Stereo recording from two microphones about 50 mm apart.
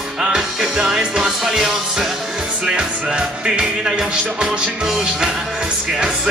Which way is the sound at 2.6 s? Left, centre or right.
Right.